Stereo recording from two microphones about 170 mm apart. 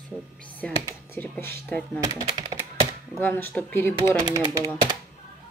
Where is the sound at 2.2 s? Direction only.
30° right (ahead or behind).